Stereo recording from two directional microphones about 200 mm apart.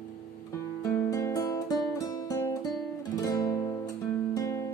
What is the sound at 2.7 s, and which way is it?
Guitar, 20° left (ahead or behind).